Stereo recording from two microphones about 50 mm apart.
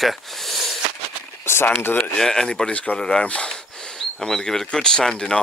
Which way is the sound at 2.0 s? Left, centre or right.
Centre.